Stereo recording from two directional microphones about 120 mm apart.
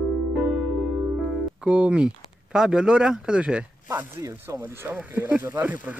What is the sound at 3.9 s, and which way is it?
A man's voice, 25° right (ahead or behind).